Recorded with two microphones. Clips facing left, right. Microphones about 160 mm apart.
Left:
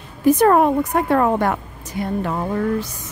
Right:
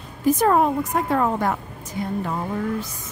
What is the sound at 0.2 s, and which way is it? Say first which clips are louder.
A woman's voice: left 4 dB; 70° left (ahead or behind).